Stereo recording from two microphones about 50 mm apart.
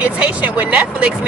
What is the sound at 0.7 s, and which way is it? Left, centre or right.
Speech, right.